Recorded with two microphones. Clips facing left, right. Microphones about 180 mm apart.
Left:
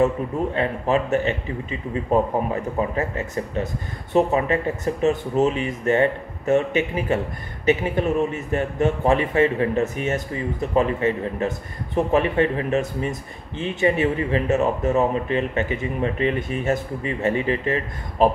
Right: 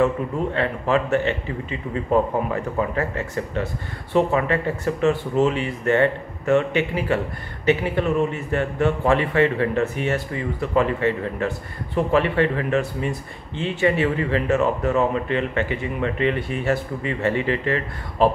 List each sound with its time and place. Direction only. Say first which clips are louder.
0.6 s speech: even; 20° left (ahead or behind)
2.5 s speech: even; 20° left (ahead or behind)